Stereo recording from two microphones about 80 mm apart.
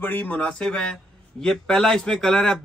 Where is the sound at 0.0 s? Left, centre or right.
Centre.